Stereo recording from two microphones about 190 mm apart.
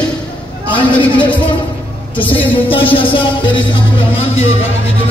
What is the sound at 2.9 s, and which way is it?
Speech, 25° left (ahead or behind).